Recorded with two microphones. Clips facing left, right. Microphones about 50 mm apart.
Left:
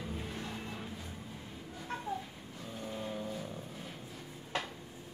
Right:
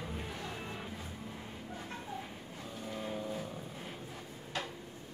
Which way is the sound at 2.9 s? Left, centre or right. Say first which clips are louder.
Right 1 dB; centre.